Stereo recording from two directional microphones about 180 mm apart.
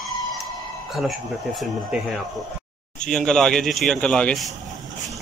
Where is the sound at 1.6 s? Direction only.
Centre (ahead or behind).